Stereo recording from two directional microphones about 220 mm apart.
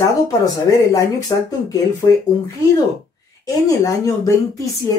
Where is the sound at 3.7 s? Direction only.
15° left (ahead or behind).